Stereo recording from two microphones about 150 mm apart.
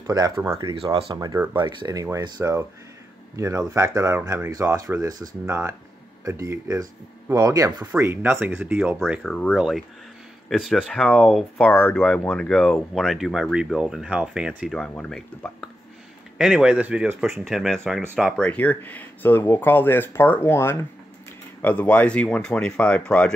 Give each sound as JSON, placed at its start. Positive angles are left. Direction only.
{"t": 0.0, "sound": "speech", "side_deg": -25}
{"t": 9.2, "sound": "speech", "side_deg": 5}
{"t": 11.7, "sound": "speech", "side_deg": 15}